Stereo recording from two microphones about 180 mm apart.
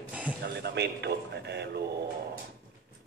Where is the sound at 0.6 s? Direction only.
70° right (ahead or behind).